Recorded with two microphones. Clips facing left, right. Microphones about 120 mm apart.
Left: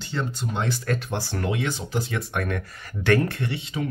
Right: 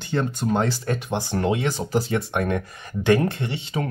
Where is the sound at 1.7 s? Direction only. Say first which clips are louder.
Right 5 dB; 40° right (ahead or behind).